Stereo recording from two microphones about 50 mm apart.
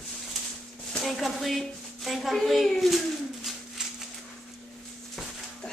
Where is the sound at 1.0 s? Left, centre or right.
Centre.